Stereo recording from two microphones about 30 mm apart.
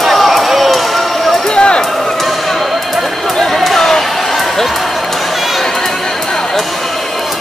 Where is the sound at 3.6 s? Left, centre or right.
Centre.